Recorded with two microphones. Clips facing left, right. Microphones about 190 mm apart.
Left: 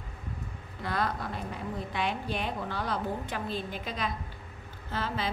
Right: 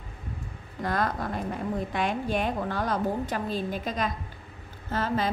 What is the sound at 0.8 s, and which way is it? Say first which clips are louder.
A woman's voice: right 4 dB; 45° right (ahead or behind).